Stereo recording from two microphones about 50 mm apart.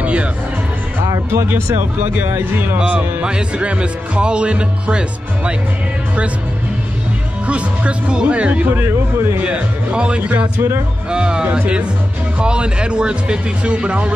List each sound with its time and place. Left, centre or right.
0.0 s music: right
1.0 s speech: right
2.5 s speech: right
2.8 s speech: right
7.4 s speech: right
8.7 s speech: right
9.4 s speech: right